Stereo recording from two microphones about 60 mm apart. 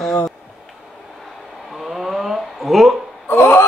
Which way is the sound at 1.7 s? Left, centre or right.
Centre.